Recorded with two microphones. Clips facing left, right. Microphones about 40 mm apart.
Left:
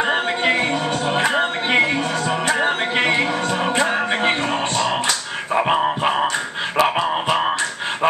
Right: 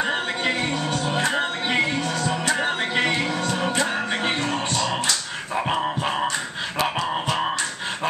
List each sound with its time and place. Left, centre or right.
0.0 s music: left
5.0 s dog: left
6.8 s music: centre